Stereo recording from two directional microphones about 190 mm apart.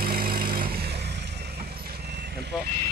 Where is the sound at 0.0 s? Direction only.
50° right (ahead or behind).